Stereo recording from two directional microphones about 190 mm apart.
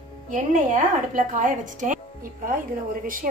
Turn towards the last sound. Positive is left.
turn(degrees=-45)  # may be behind; listen again after turning